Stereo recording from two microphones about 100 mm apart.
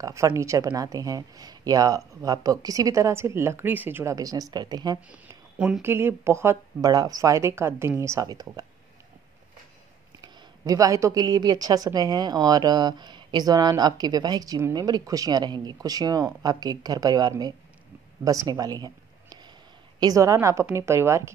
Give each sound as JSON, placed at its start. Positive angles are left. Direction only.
{"t": 0.0, "sound": "a woman's voice", "side_deg": -30}
{"t": 4.1, "sound": "a woman's voice", "side_deg": -40}
{"t": 5.8, "sound": "speech", "side_deg": -20}
{"t": 6.8, "sound": "speech", "side_deg": -40}
{"t": 8.3, "sound": "speech", "side_deg": -45}
{"t": 10.2, "sound": "a woman's voice", "side_deg": -40}
{"t": 18.2, "sound": "a sound", "side_deg": -35}
{"t": 20.0, "sound": "speech", "side_deg": -35}